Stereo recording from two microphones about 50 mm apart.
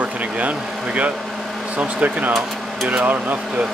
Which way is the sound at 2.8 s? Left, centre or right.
Right.